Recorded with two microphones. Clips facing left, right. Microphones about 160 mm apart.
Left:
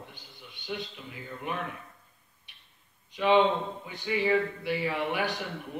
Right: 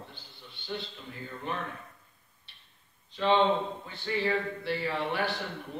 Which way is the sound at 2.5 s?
15° left (ahead or behind).